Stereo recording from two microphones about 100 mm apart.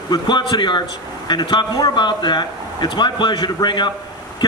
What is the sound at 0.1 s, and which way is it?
A man's voice, 50° left (ahead or behind).